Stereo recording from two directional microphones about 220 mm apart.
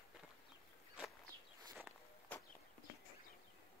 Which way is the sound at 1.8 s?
Centre (ahead or behind).